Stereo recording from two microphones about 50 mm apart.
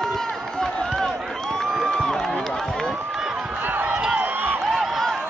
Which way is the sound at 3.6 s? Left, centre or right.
Right.